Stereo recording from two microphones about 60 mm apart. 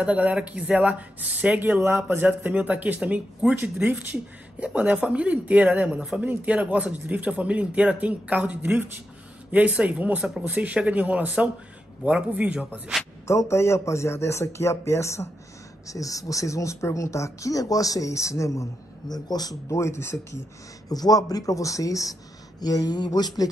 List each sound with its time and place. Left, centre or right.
0.0 s speech: right
13.5 s speech: left
15.9 s speech: left
19.8 s speech: left
20.9 s speech: left
22.6 s a sound: left